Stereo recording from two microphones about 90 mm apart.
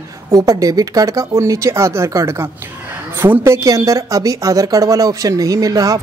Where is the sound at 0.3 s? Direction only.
40° right (ahead or behind).